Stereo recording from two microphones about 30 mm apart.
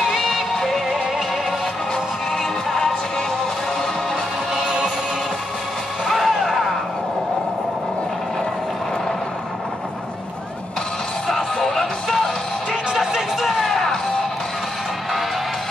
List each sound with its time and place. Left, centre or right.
0.1 s music: centre
6.0 s music: centre
11.2 s music: centre
12.9 s music: centre
13.6 s music: centre